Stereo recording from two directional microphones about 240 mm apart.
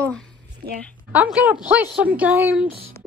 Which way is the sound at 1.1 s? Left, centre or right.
Centre.